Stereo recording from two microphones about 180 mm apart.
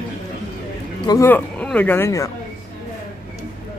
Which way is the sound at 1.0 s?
15° left (ahead or behind).